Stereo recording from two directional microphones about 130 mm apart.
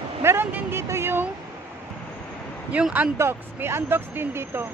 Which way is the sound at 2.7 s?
10° right (ahead or behind).